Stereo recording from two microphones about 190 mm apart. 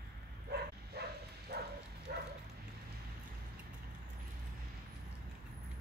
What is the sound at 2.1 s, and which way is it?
Dog, 55° right (ahead or behind).